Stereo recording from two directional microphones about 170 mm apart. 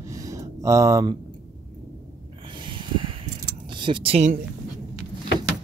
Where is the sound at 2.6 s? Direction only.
30° right (ahead or behind).